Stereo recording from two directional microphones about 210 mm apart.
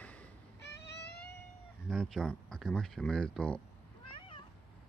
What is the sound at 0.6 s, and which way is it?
Music, 55° left (ahead or behind).